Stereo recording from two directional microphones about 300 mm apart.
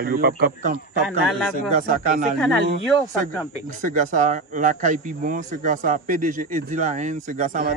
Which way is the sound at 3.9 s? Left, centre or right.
Right.